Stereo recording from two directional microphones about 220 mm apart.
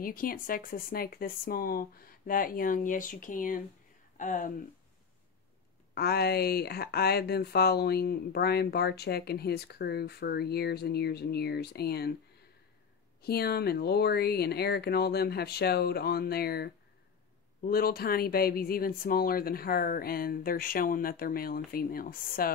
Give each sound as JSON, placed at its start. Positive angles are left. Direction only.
{"t": 0.0, "sound": "speech", "side_deg": 40}
{"t": 5.9, "sound": "speech", "side_deg": 45}
{"t": 13.2, "sound": "speech", "side_deg": 45}